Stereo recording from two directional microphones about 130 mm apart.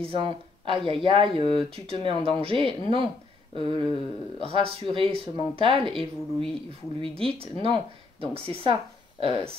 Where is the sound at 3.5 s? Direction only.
40° right (ahead or behind).